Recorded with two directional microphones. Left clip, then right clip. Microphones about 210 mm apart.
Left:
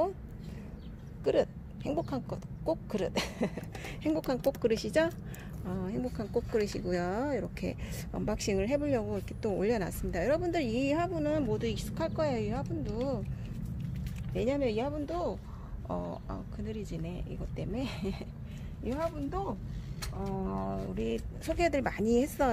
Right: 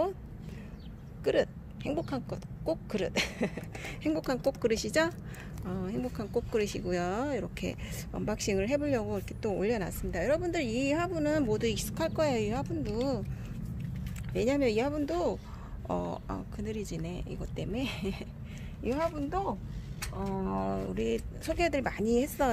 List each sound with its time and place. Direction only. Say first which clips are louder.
1.2 s speech: even; 5° right (ahead or behind)
11.1 s speech: right 2 dB; 15° right (ahead or behind)
14.3 s speech: right 3 dB; 20° right (ahead or behind); by 18.1 s 5° right (ahead or behind)
18.9 s speech: right 3 dB; 30° right (ahead or behind)
21.5 s speech: even; centre (ahead or behind)